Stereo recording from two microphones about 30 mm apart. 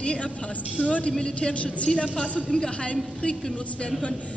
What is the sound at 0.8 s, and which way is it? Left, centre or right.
Speech, left.